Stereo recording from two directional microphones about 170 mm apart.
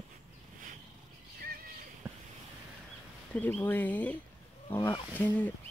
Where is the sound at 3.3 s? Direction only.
10° left (ahead or behind).